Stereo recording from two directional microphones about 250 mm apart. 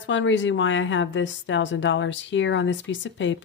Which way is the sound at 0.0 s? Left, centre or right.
Left.